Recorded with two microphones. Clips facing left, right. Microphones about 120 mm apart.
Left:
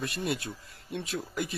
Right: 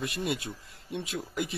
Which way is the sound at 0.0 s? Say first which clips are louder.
Even; 20° right (ahead or behind).